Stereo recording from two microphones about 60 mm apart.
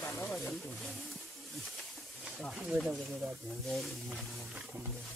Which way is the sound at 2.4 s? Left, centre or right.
Centre.